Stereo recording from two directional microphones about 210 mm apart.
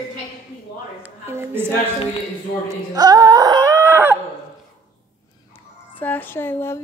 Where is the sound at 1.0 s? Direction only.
10° right (ahead or behind).